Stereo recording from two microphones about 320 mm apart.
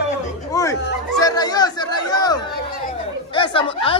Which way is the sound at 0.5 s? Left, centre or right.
Centre.